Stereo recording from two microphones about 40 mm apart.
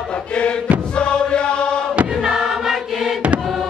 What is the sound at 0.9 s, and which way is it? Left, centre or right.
Chant, left.